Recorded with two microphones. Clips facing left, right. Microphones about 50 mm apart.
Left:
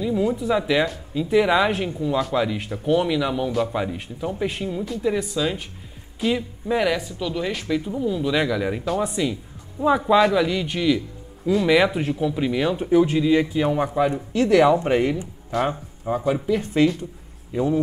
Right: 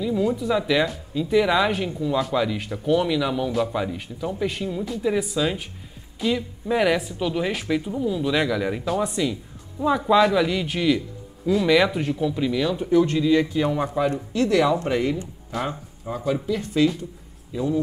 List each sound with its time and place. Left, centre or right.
0.0 s speech: centre
14.5 s speech: left
15.1 s speech: centre; by 17.8 s left